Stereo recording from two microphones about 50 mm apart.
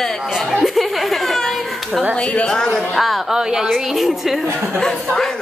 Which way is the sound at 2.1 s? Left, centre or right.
Left.